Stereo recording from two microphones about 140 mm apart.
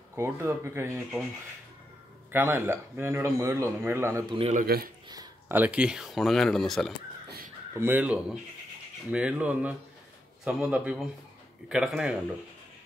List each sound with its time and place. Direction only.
0.1 s speech: 20° right (ahead or behind)
2.3 s speech: 15° right (ahead or behind)
4.3 s speech: 40° right (ahead or behind)
4.6 s speech: 90° right
5.0 s a sound: 30° right (ahead or behind)
5.5 s speech: 10° right (ahead or behind)
7.7 s speech: 15° right (ahead or behind)